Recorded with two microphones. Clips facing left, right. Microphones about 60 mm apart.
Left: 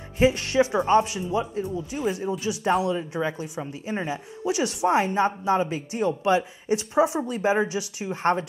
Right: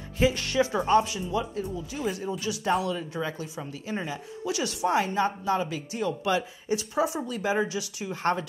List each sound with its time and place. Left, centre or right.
0.2 s speech: left